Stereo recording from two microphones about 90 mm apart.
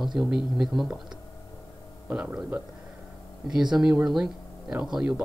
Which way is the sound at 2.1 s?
15° right (ahead or behind).